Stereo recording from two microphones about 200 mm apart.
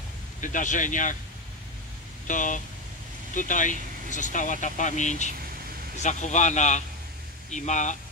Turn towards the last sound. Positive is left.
turn(degrees=35)  # may be behind; listen again after turning